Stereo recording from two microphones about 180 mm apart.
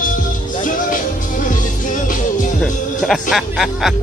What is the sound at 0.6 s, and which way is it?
Music, 45° left (ahead or behind).